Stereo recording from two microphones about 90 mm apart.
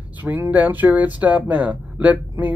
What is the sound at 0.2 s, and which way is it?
Speech, 20° right (ahead or behind).